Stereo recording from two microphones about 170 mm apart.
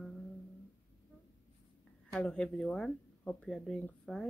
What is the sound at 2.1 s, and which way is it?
Speech, 5° left (ahead or behind).